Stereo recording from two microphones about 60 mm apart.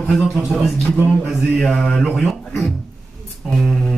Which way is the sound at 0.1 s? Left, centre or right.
Centre.